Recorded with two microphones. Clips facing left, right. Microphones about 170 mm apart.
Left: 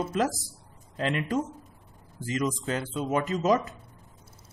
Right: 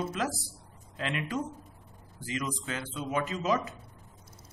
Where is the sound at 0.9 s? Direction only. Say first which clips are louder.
Left 5 dB; 40° left (ahead or behind).